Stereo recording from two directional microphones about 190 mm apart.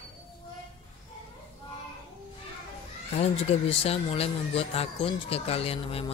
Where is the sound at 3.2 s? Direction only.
30° left (ahead or behind).